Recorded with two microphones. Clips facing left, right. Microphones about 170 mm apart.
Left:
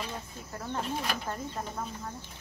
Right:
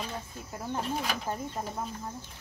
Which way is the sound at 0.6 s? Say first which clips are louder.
Right 1 dB; 5° right (ahead or behind).